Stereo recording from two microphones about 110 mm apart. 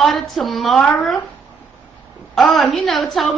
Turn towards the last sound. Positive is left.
turn(degrees=0)  # may be behind; listen again after turning